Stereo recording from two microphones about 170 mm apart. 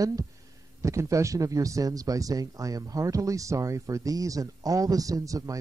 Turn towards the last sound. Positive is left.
turn(degrees=-20)  # may be behind; listen again after turning